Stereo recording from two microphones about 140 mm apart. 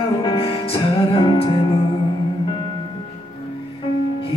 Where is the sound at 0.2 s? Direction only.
35° left (ahead or behind).